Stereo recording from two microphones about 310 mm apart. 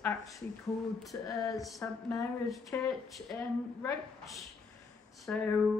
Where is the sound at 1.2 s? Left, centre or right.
Centre.